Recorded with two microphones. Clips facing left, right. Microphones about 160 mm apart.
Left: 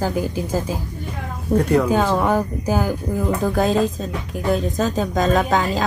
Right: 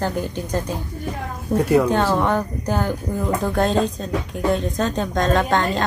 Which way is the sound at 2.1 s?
5° left (ahead or behind).